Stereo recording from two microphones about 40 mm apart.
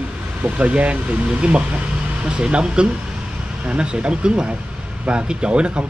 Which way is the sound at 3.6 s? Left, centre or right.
Right.